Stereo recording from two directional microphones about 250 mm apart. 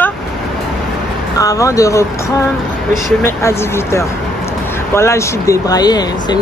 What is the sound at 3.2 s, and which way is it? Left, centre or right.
Speech, centre.